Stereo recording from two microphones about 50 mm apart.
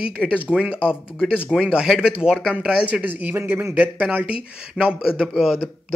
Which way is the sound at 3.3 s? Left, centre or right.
Right.